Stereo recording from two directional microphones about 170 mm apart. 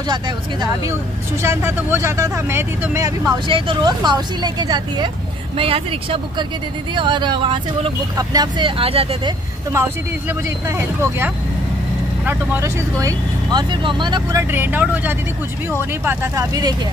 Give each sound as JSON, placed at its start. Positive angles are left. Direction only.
{"t": 0.1, "sound": "speech", "side_deg": -25}
{"t": 3.4, "sound": "speech", "side_deg": -30}
{"t": 11.0, "sound": "speech", "side_deg": -10}
{"t": 14.5, "sound": "speech", "side_deg": -10}